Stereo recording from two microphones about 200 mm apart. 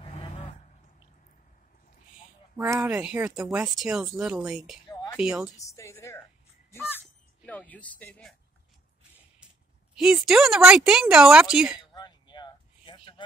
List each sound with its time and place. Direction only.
0.0 s a sound: 30° left (ahead or behind)
2.5 s speech: 10° right (ahead or behind)
5.8 s a woman's voice: 15° left (ahead or behind)
6.7 s crow: 10° left (ahead or behind)
9.9 s speech: centre (ahead or behind)
11.9 s a sound: 20° left (ahead or behind)